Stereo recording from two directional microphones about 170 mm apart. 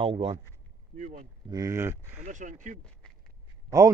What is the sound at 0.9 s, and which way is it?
Speech, 45° right (ahead or behind).